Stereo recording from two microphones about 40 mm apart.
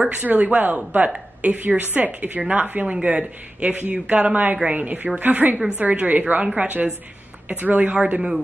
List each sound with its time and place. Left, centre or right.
0.1 s a woman's voice: right
3.6 s speech: right
6.4 s speech: right
7.6 s speech: right
7.9 s speech: right